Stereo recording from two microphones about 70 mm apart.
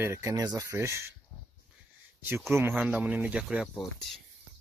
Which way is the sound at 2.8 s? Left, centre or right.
Centre.